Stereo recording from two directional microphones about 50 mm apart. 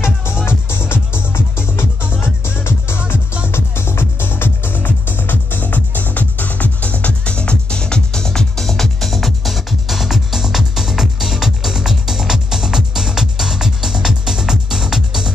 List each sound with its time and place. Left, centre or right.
0.0 s music: left; by 15.3 s centre